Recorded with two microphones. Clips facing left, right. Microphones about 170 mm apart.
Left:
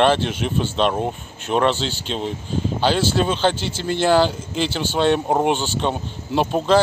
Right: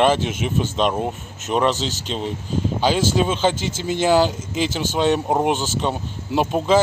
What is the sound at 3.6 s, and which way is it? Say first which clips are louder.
Speech: right 1 dB; 45° right (ahead or behind).